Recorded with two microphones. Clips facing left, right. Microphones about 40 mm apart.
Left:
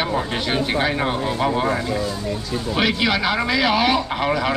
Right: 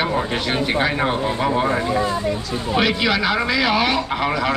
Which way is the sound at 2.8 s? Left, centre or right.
Centre.